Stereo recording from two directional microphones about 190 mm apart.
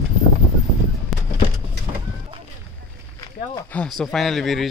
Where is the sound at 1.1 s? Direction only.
Centre (ahead or behind).